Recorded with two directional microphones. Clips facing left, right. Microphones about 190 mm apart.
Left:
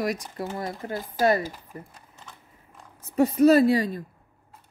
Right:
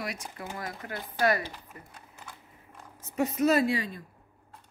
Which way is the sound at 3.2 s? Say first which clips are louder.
Left 7 dB; 35° left (ahead or behind).